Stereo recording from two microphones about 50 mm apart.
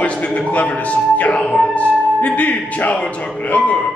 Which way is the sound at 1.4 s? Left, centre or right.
Left.